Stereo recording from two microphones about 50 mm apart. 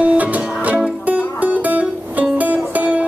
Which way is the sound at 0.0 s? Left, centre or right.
Right.